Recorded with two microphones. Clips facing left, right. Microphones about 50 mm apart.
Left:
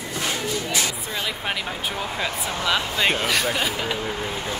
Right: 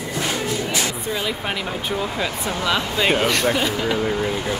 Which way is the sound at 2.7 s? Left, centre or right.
Centre.